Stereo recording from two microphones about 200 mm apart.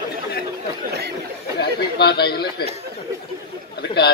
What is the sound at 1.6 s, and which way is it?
Speech, 55° left (ahead or behind).